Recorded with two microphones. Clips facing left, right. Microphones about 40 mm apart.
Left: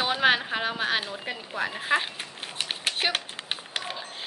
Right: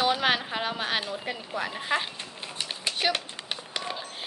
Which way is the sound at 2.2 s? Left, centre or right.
Left.